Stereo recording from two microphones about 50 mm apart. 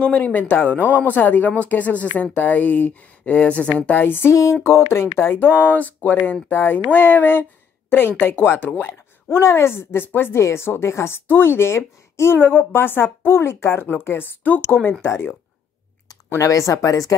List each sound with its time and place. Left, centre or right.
0.2 s speech: left
3.9 s a woman's voice: left
4.3 s speech: left
4.6 s a woman's voice: left
10.4 s a woman's voice: left
12.4 s a woman's voice: left
14.4 s speech: left
16.3 s speech: left